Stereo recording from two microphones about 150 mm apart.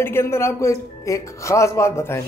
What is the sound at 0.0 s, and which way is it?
Speech, 15° left (ahead or behind).